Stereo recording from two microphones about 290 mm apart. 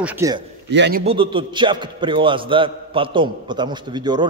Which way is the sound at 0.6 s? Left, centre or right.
Right.